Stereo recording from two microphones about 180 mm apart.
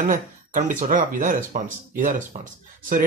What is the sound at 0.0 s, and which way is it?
Speech, 45° right (ahead or behind).